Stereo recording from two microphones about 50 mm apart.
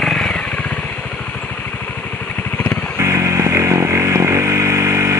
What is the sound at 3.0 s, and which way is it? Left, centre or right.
Motorcycle, right.